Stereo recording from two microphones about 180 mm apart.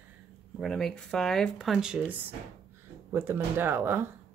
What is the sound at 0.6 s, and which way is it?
Speech, centre (ahead or behind).